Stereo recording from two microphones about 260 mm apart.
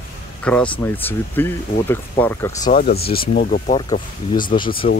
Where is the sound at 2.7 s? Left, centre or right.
Left.